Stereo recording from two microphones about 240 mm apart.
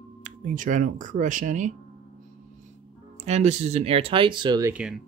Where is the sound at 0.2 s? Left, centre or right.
Right.